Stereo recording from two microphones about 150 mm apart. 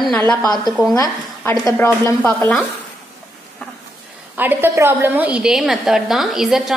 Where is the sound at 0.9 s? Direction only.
20° left (ahead or behind).